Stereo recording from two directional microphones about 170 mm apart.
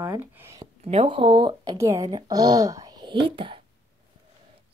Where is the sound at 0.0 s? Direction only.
15° right (ahead or behind).